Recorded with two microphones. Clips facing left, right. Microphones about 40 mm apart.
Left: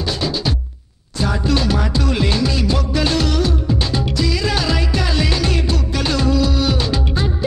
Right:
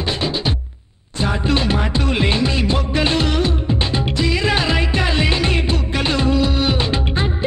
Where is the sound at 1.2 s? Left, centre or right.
Right.